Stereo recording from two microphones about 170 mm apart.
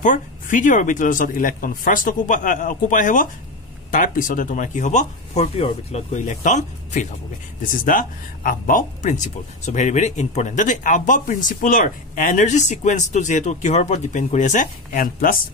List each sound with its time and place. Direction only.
0.0 s speech: 50° left (ahead or behind)